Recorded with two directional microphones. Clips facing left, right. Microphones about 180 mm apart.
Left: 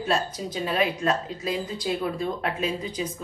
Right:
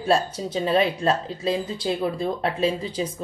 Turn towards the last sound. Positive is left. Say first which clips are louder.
# right 5 dB
turn(degrees=-30)  # may be behind; listen again after turning